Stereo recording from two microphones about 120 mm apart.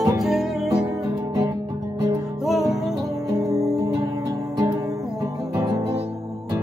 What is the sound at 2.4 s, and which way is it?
Music, centre (ahead or behind).